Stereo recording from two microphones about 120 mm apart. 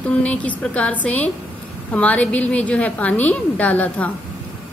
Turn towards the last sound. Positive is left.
turn(degrees=10)  # may be behind; listen again after turning